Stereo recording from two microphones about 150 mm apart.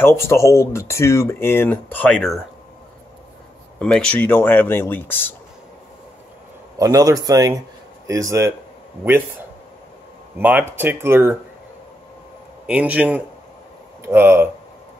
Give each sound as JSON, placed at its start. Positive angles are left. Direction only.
{"t": 0.0, "sound": "speech", "side_deg": 15}
{"t": 3.8, "sound": "speech", "side_deg": 5}
{"t": 6.8, "sound": "a man's voice", "side_deg": -25}
{"t": 10.4, "sound": "speech", "side_deg": -15}
{"t": 12.6, "sound": "speech", "side_deg": -10}